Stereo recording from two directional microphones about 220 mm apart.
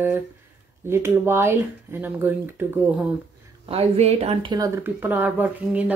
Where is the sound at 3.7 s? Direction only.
25° right (ahead or behind).